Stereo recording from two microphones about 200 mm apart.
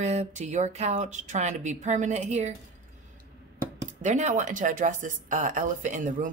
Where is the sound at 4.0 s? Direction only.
35° right (ahead or behind).